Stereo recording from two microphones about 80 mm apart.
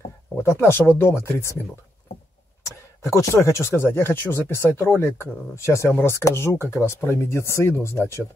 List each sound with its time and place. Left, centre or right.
0.4 s speech: left
3.2 s speech: left